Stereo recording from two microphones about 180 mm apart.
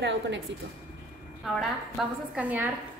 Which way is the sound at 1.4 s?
Centre (ahead or behind).